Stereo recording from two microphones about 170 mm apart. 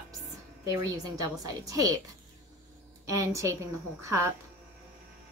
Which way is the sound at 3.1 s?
20° right (ahead or behind).